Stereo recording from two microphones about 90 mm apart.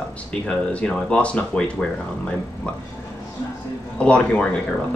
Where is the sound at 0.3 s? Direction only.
10° left (ahead or behind).